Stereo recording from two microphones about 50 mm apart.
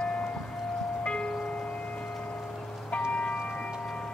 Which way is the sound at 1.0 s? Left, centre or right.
Centre.